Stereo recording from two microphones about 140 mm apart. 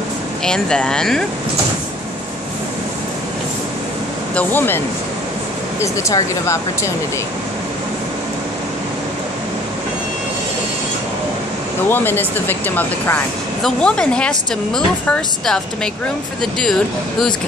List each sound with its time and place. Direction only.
0.5 s speech: 5° left (ahead or behind)
4.4 s speech: 15° left (ahead or behind)
11.9 s speech: 15° left (ahead or behind)
13.6 s speech: 5° left (ahead or behind)